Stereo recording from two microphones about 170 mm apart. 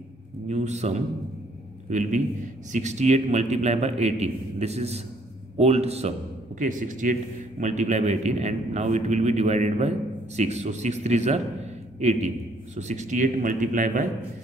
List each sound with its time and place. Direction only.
0.5 s a man's voice: 40° right (ahead or behind)
6.6 s a man's voice: 50° right (ahead or behind)